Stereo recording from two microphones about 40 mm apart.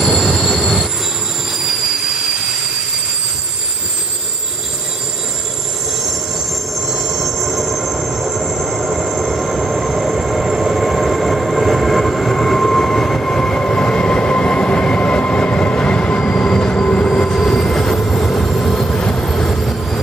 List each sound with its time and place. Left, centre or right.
0.5 s train: centre
6.9 s train: centre
13.8 s train: left
19.5 s train: centre